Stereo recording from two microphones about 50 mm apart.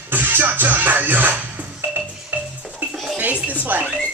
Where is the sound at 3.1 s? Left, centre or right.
Right.